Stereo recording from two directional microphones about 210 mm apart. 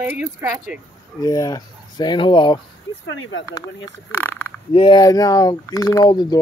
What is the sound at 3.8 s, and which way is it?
Speech, 10° left (ahead or behind).